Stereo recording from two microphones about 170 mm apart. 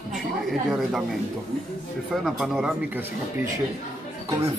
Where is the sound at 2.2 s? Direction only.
Centre (ahead or behind).